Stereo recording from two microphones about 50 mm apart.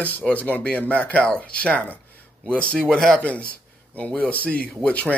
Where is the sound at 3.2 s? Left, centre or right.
Left.